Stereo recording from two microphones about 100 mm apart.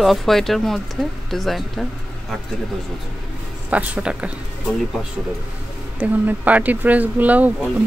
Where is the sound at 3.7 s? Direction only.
15° right (ahead or behind).